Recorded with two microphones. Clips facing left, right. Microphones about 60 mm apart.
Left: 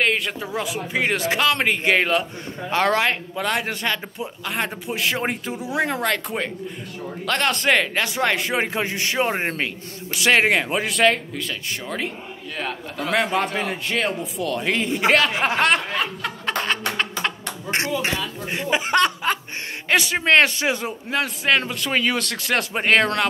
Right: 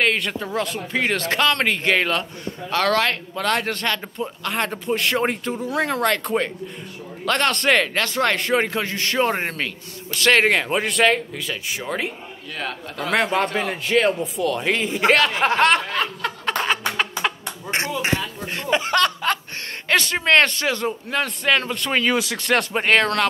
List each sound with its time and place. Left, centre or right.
0.0 s speech: centre
2.7 s speech: left
6.0 s a man's voice: centre
8.7 s a man's voice: centre
15.3 s snicker: centre
18.5 s a man's voice: centre